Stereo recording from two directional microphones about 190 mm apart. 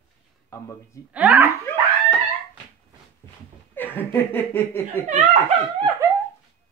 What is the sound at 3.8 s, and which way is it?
Speech, 10° left (ahead or behind).